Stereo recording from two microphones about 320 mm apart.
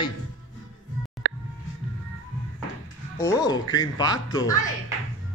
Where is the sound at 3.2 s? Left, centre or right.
Centre.